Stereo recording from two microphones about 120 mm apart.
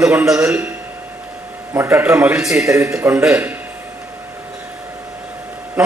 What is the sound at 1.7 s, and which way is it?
Speech, 20° right (ahead or behind).